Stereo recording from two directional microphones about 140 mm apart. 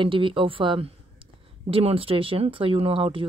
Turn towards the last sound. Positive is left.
turn(degrees=-40)  # may be behind; listen again after turning